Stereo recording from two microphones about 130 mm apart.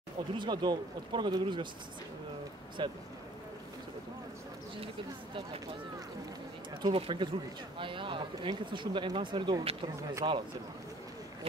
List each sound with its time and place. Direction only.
0.4 s speech: 35° right (ahead or behind)
2.8 s speech: 40° right (ahead or behind)
6.8 s speech: 45° right (ahead or behind)